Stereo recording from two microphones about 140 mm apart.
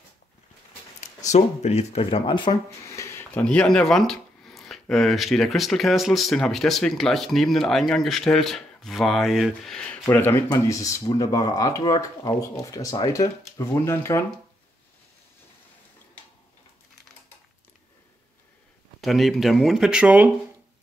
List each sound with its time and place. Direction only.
1.0 s speech: 55° left (ahead or behind); by 2.5 s 35° left (ahead or behind)
2.8 s speech: 20° left (ahead or behind); by 9.9 s 5° left (ahead or behind)
10.0 s speech: 15° left (ahead or behind)
18.9 s speech: centre (ahead or behind)